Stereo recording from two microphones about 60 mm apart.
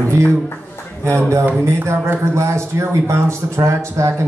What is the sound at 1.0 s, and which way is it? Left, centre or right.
A man's voice, right.